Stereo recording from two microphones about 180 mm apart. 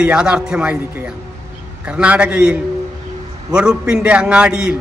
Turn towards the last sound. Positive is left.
turn(degrees=-5)  # may be behind; listen again after turning